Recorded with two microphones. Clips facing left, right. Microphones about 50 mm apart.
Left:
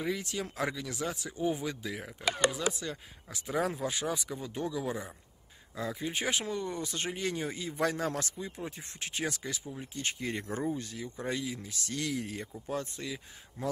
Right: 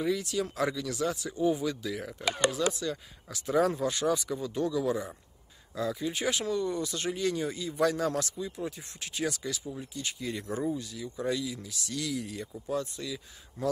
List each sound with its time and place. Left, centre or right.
0.0 s speech: left; by 2.7 s centre
2.7 s speech: left